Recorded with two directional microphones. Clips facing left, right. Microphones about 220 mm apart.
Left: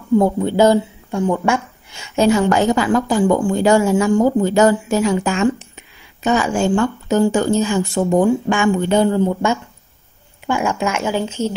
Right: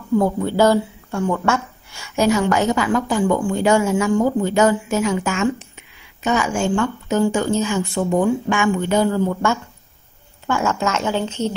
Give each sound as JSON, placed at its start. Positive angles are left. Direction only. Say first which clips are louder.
{"t": 0.2, "sound": "speech", "louder": "left 1 dB", "side_deg": 20}